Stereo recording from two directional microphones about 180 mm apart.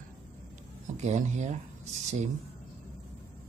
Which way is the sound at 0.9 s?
40° right (ahead or behind).